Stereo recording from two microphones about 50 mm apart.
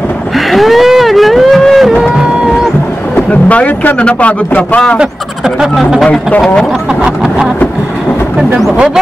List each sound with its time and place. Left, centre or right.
0.5 s a sound: centre
1.9 s music: centre
3.2 s a man's voice: left
5.6 s speech: centre